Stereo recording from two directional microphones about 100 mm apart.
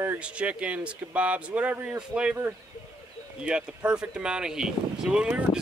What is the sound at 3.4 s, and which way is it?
Speech, 10° right (ahead or behind).